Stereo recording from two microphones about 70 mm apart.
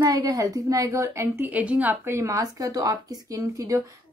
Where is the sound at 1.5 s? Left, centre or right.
Centre.